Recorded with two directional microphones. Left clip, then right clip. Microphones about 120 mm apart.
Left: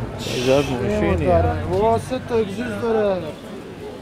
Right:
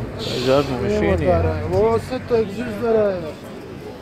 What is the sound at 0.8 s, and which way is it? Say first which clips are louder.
Speech: right 1 dB; 30° left (ahead or behind).